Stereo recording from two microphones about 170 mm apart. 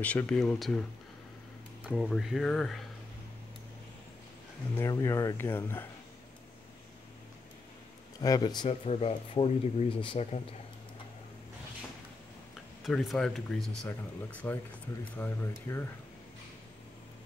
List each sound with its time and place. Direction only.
0.0 s speech: 10° left (ahead or behind)
1.9 s speech: centre (ahead or behind)
4.7 s speech: 20° left (ahead or behind)
8.2 s speech: 25° left (ahead or behind)
8.6 s speech: 35° left (ahead or behind)
12.8 s speech: centre (ahead or behind)